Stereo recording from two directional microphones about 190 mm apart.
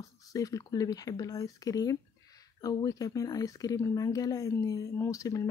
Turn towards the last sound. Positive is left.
turn(degrees=15)  # may be behind; listen again after turning